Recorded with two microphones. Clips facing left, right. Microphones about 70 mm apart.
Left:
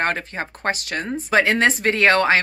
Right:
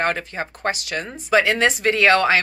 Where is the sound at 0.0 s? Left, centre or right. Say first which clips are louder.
Even; left.